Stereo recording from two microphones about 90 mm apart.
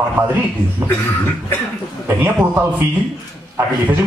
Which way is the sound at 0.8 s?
30° right (ahead or behind).